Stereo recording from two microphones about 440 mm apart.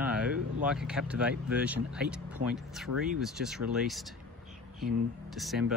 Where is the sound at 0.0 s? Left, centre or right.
Centre.